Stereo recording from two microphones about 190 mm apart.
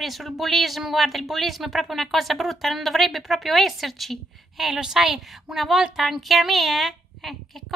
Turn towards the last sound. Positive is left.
turn(degrees=0)  # may be behind; listen again after turning